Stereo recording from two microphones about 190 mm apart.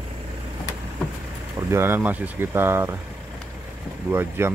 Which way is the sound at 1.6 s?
15° right (ahead or behind).